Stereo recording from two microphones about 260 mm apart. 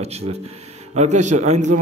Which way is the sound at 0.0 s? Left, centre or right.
Right.